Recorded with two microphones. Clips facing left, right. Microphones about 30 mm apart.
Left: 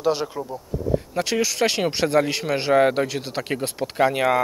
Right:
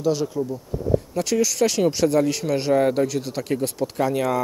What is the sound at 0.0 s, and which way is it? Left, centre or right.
Speech, left.